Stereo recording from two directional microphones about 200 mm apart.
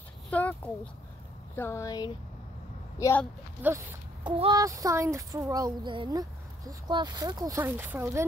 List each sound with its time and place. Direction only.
0.3 s a sound: 5° left (ahead or behind)
1.5 s speech: 10° left (ahead or behind)
3.6 s speech: 10° right (ahead or behind)
4.2 s speech: 25° right (ahead or behind)